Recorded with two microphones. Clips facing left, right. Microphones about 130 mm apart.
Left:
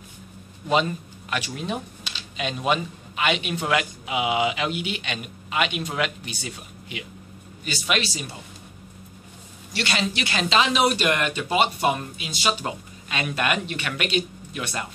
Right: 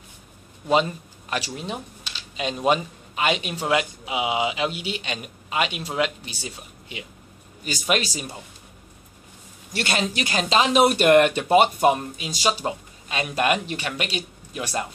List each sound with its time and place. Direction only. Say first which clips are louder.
1.3 s a man's voice: left 1 dB; 30° right (ahead or behind)
7.6 s a man's voice: right 2 dB; 40° right (ahead or behind)
9.7 s speech: right 1 dB; 45° right (ahead or behind)
11.9 s a man's voice: right 3 dB; 40° right (ahead or behind)